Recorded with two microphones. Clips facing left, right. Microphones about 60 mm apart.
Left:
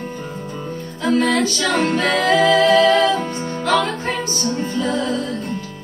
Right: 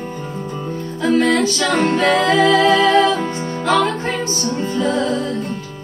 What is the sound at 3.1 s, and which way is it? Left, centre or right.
Music, centre.